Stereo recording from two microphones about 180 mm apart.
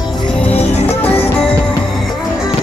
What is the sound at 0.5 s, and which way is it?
Music, 35° left (ahead or behind).